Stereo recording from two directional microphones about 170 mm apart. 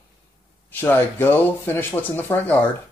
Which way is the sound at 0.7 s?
10° left (ahead or behind).